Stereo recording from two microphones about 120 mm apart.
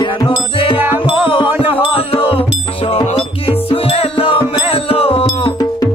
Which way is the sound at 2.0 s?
50° left (ahead or behind).